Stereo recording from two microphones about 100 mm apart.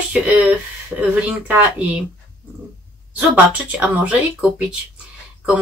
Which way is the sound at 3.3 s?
15° right (ahead or behind).